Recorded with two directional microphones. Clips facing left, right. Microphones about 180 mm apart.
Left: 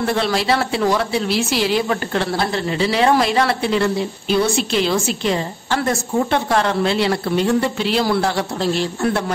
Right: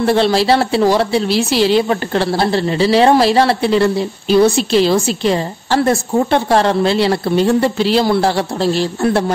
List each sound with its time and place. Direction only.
0.0 s a woman's voice: 30° right (ahead or behind)